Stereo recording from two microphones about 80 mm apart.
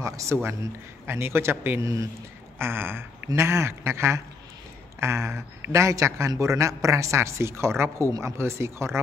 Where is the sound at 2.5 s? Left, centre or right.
Right.